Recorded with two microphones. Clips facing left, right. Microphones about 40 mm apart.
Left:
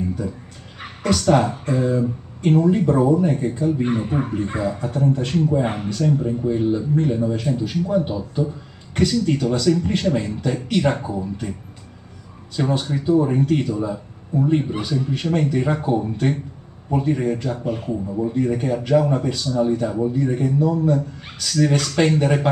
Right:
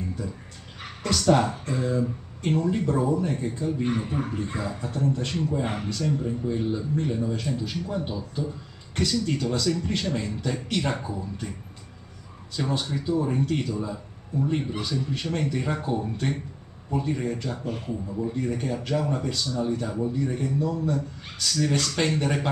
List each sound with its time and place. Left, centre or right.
0.7 s a man's voice: centre
12.5 s a man's voice: left
17.9 s a man's voice: left